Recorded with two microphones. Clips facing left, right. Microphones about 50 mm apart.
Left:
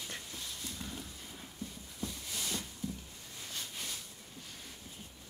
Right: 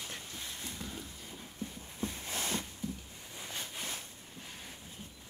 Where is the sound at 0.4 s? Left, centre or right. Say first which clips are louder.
Right 1 dB; right.